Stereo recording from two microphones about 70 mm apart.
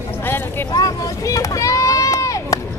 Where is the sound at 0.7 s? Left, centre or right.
Left.